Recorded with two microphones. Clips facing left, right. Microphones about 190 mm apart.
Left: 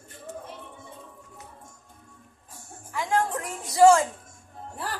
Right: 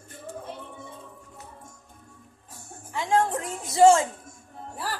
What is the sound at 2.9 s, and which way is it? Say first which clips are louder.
Music: right 2 dB; 25° right (ahead or behind).